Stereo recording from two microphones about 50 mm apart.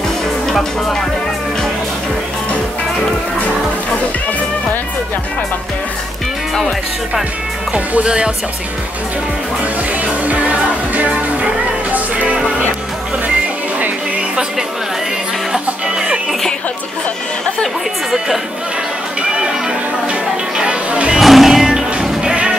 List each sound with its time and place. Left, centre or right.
0.5 s speech: centre
7.7 s speech: right
10.2 s music: right
15.5 s music: centre
20.1 s music: centre
21.2 s music: centre
21.6 s music: centre